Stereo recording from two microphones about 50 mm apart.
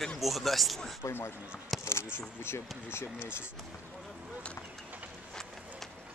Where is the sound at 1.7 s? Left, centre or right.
Centre.